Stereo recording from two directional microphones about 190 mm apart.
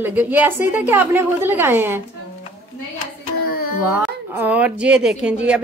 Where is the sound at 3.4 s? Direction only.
55° left (ahead or behind).